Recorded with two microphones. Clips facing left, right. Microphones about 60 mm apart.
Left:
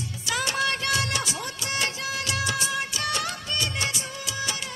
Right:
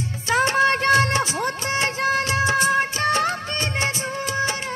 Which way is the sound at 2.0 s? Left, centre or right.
Right.